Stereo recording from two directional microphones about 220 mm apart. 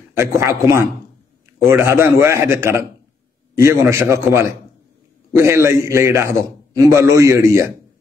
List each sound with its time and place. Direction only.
0.4 s a man's voice: 15° right (ahead or behind)